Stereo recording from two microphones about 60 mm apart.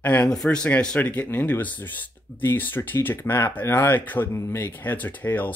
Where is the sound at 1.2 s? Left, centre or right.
Left.